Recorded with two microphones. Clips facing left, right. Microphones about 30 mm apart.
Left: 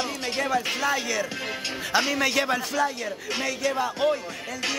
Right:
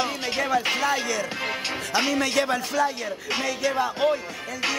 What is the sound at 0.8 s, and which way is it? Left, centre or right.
Speech, centre.